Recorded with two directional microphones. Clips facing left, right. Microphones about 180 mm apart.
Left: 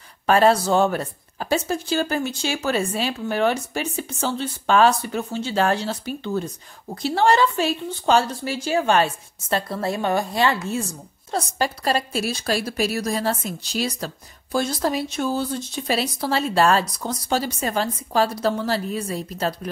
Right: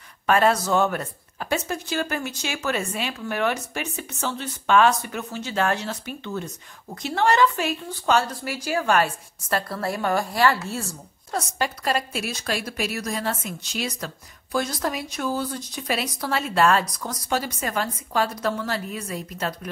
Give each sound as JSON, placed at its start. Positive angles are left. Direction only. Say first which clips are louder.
{"t": 0.3, "sound": "a woman's voice", "louder": "left 3 dB", "side_deg": 30}
{"t": 11.3, "sound": "a woman's voice", "louder": "left 3 dB", "side_deg": 35}